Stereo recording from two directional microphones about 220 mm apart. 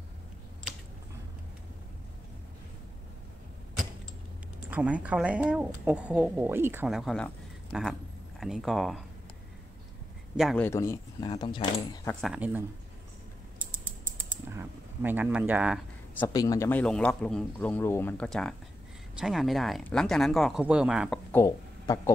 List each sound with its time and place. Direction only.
4.6 s speech: 5° right (ahead or behind)
10.3 s speech: centre (ahead or behind)
10.6 s speech: 10° left (ahead or behind)
12.2 s speech: 5° right (ahead or behind)
14.3 s typing: 10° right (ahead or behind)
16.2 s speech: 15° left (ahead or behind); by 21.2 s 5° right (ahead or behind)
21.3 s a sound: 15° left (ahead or behind)